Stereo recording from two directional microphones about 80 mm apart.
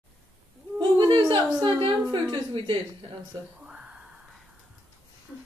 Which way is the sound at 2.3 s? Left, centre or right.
Right.